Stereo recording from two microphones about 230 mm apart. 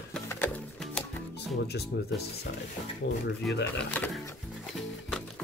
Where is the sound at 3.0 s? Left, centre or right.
Left.